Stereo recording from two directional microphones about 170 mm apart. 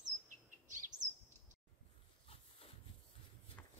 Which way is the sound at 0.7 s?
45° right (ahead or behind).